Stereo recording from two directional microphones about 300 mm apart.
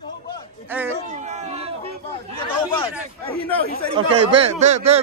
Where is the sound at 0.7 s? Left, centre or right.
Centre.